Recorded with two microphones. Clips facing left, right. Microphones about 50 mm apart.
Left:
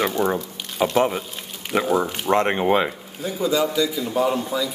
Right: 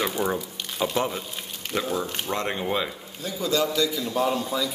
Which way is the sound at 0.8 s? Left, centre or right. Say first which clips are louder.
Left 6 dB; left.